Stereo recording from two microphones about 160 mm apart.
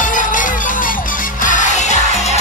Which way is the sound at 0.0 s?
55° left (ahead or behind).